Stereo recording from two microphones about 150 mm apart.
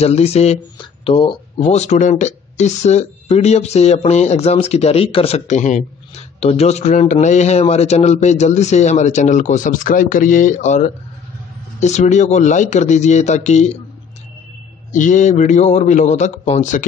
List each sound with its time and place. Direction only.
0.0 s speech: 45° left (ahead or behind)
1.7 s speech: 50° left (ahead or behind)
14.9 s speech: 55° left (ahead or behind)